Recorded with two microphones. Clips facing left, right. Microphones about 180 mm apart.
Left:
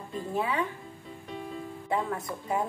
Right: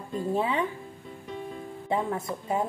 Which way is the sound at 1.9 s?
25° right (ahead or behind).